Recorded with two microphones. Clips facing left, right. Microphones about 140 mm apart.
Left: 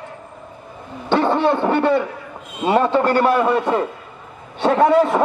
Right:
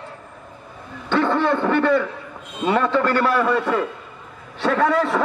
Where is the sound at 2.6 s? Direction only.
25° left (ahead or behind).